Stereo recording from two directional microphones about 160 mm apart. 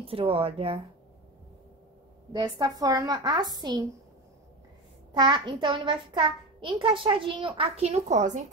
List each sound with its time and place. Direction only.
0.0 s a child's voice: 35° right (ahead or behind)
2.3 s a woman's voice: 25° right (ahead or behind)
5.1 s a child's voice: 25° right (ahead or behind); by 8.5 s 45° right (ahead or behind)